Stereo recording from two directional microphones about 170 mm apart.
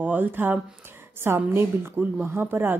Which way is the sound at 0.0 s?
10° right (ahead or behind).